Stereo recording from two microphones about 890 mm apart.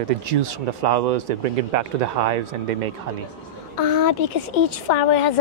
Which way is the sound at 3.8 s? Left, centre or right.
Left.